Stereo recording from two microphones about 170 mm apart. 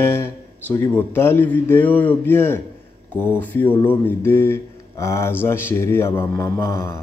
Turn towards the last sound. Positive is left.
turn(degrees=15)  # may be behind; listen again after turning